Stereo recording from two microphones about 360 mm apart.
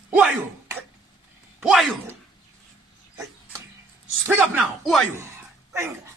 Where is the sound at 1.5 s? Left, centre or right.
Centre.